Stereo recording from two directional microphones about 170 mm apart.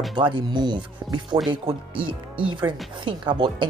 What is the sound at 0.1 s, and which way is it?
Speech, 25° right (ahead or behind).